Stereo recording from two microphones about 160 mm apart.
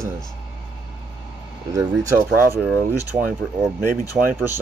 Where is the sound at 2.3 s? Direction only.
5° right (ahead or behind).